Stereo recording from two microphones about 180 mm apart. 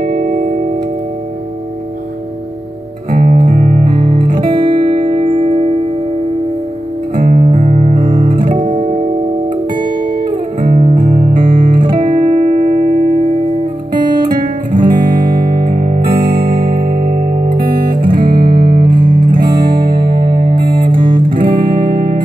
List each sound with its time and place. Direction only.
0.0 s tubular bells: 55° right (ahead or behind)
3.1 s music: 50° right (ahead or behind)
4.5 s music: 25° right (ahead or behind)
7.2 s guitar: 45° right (ahead or behind)
8.5 s guitar: 40° right (ahead or behind)
10.6 s music: 50° right (ahead or behind)
14.2 s music: 50° right (ahead or behind)